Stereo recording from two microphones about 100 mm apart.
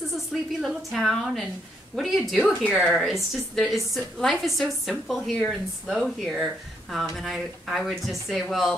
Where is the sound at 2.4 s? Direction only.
15° left (ahead or behind).